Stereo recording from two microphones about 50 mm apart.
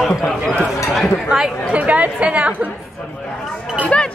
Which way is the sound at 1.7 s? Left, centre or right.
Right.